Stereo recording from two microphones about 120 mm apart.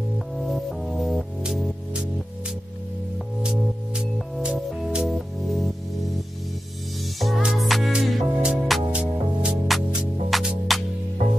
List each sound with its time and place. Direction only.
0.4 s music: centre (ahead or behind)
3.4 s music: centre (ahead or behind)
7.2 s music: centre (ahead or behind)